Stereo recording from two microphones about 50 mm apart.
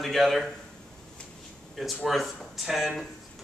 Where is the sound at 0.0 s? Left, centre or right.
Centre.